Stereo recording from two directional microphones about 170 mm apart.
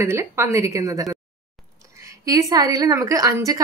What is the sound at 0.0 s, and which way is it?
A woman's voice, 15° right (ahead or behind).